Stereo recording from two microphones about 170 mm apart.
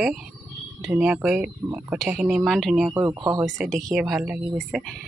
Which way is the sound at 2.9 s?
15° right (ahead or behind).